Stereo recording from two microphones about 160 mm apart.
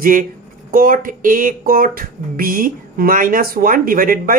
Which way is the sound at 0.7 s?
60° right (ahead or behind).